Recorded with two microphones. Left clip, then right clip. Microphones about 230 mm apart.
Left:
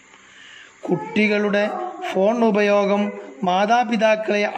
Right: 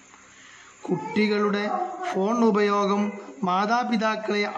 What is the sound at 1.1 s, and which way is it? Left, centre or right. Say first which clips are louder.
A man's voice: left 5 dB; centre.